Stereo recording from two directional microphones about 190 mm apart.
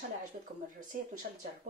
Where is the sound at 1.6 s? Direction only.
45° right (ahead or behind).